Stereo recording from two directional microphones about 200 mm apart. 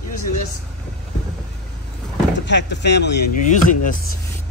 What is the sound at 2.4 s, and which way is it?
Speech, 60° left (ahead or behind).